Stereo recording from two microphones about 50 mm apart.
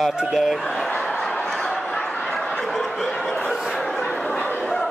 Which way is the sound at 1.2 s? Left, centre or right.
Centre.